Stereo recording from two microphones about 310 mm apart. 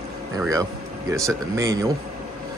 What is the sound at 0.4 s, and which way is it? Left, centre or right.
Speech, centre.